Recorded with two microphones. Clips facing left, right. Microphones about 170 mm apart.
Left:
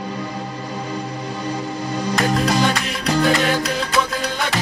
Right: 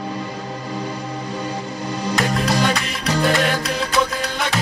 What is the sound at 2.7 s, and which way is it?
Music, centre (ahead or behind).